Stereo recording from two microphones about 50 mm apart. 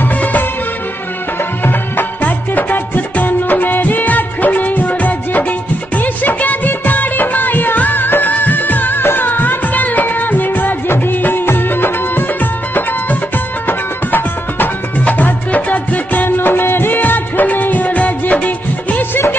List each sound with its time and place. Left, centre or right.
0.0 s music: left
1.6 s music of bollywood: left
5.9 s music: left
13.7 s music: left
16.3 s music of bollywood: left